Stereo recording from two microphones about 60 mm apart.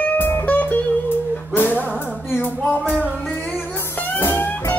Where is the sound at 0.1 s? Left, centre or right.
Left.